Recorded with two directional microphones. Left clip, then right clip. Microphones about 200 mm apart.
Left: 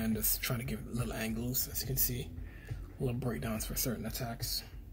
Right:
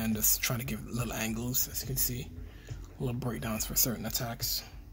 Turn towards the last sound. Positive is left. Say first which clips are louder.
# right 4 dB
turn(degrees=-30)  # may be behind; listen again after turning